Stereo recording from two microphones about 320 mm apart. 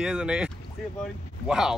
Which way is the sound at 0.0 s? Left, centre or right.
Centre.